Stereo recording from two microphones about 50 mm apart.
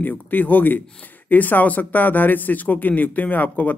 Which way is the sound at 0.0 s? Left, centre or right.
Left.